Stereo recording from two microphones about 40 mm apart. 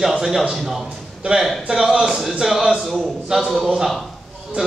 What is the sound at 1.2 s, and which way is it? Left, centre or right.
Speech, right.